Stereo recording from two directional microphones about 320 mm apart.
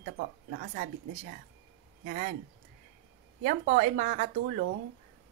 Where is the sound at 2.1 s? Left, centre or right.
Right.